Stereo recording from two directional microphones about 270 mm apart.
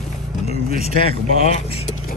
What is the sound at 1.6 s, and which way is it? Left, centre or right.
Speech, left.